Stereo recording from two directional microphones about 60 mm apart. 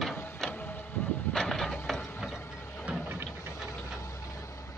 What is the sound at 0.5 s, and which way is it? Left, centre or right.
Vehicle, left.